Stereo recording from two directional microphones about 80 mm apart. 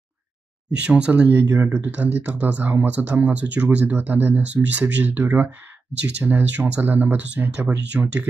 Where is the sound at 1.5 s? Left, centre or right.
Right.